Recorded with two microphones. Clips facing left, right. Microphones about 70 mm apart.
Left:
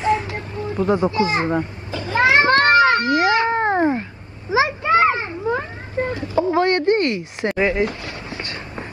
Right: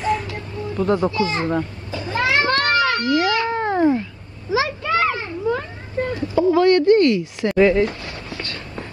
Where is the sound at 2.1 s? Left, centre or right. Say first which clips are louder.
Left 4 dB; left.